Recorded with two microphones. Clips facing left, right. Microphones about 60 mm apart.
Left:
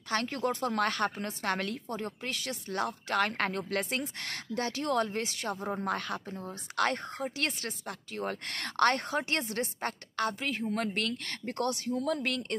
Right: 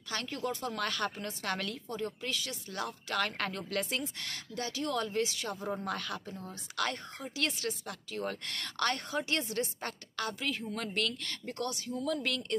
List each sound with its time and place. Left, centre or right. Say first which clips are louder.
0.1 s speech: left 5 dB; left
6.8 s speech: left 5 dB; left
11.9 s speech: left 3 dB; left